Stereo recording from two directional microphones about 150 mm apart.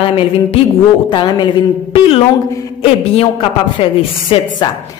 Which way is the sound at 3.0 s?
40° left (ahead or behind).